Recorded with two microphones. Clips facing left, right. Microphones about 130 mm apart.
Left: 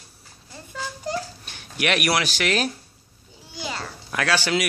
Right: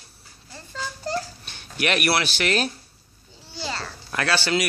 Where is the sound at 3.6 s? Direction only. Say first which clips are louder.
Even; 10° left (ahead or behind).